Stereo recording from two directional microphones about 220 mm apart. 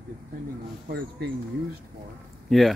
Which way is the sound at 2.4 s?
Centre (ahead or behind).